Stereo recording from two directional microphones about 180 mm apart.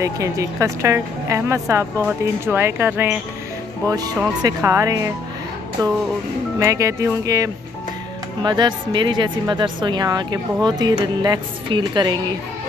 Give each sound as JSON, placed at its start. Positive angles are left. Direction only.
{"t": 0.0, "sound": "speech", "side_deg": -20}
{"t": 3.9, "sound": "speech", "side_deg": -20}
{"t": 6.6, "sound": "speech", "side_deg": -20}